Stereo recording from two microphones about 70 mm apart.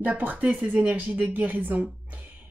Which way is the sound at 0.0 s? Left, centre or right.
Right.